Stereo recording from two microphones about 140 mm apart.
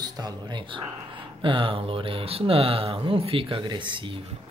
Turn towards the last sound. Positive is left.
turn(degrees=-40)  # may be behind; listen again after turning